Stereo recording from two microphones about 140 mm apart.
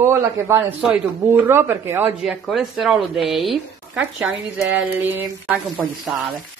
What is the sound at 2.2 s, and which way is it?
Speech, 5° right (ahead or behind).